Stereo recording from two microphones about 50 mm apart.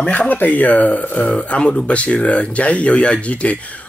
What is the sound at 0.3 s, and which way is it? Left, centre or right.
Speech, left.